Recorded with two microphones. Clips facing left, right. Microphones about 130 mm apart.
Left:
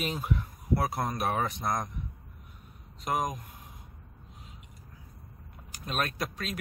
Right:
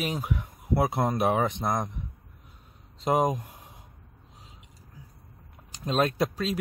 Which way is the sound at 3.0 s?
25° right (ahead or behind).